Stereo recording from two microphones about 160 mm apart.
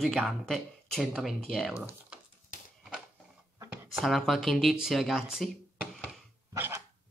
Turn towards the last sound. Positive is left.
turn(degrees=-15)  # may be behind; listen again after turning